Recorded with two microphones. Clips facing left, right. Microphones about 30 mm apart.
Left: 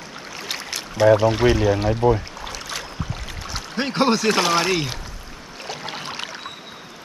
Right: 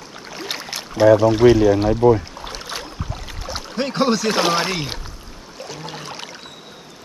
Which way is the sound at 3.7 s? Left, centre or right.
Centre.